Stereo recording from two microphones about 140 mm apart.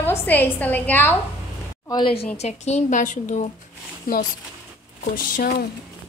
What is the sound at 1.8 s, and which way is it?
Speech, 30° left (ahead or behind).